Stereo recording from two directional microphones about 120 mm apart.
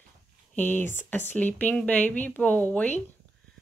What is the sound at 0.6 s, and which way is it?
Speech, 15° left (ahead or behind).